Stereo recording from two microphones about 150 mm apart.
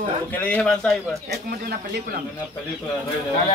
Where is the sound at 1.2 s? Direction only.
90° right.